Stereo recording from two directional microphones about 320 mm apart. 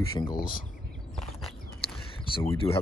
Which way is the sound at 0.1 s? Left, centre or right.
Centre.